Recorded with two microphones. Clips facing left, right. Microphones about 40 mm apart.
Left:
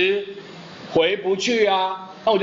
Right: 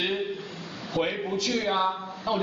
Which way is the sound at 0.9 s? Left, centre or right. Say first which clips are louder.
Left 9 dB; left.